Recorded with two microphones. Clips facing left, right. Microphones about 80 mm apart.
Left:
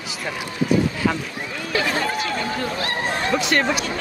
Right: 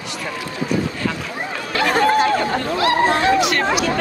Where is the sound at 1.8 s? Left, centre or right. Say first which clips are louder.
Right 8 dB; right.